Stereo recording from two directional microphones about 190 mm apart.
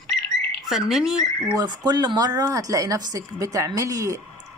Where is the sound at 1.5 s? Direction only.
20° right (ahead or behind).